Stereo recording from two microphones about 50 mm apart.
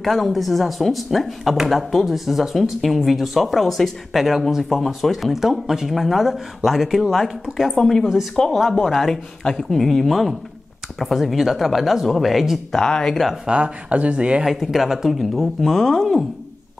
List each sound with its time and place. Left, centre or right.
0.0 s speech: centre
12.8 s speech: centre
13.1 s speech: centre
13.5 s speech: right
14.4 s speech: centre